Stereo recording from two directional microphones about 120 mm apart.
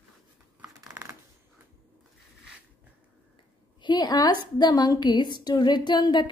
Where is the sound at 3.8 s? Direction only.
35° left (ahead or behind).